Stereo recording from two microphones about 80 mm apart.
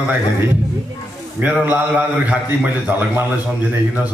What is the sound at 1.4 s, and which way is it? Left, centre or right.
A man's voice, right.